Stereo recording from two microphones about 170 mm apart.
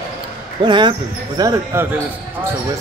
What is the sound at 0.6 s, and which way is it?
Speech, 25° right (ahead or behind).